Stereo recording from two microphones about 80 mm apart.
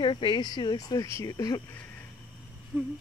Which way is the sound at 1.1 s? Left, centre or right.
Left.